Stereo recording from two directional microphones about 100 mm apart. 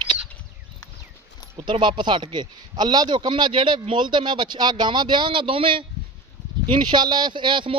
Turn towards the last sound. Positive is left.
turn(degrees=-55)  # may be behind; listen again after turning